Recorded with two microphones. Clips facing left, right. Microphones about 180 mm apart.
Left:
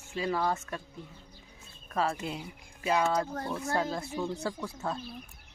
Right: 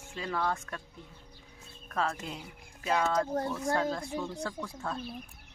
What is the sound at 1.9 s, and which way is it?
Speech, 10° left (ahead or behind).